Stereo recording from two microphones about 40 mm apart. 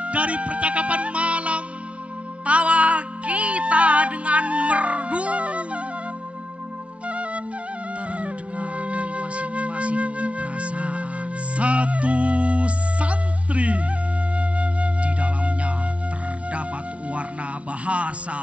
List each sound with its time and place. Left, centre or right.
0.0 s music: right
7.1 s flute: right
11.5 s music: right
14.3 s flute: right
17.8 s music: right